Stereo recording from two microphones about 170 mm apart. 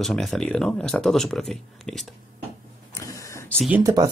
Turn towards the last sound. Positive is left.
turn(degrees=-20)  # may be behind; listen again after turning